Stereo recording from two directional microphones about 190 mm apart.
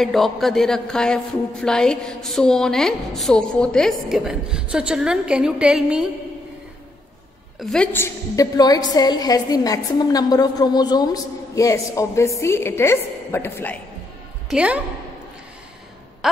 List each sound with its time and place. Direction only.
0.0 s a woman's voice: centre (ahead or behind)
7.7 s a woman's voice: 10° left (ahead or behind)
14.5 s a woman's voice: 5° right (ahead or behind)